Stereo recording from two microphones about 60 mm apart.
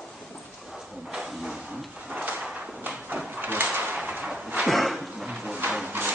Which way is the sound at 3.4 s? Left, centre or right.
Right.